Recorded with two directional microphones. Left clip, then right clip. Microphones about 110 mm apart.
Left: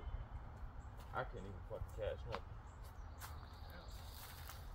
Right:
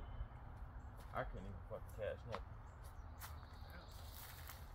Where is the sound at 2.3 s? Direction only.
10° right (ahead or behind).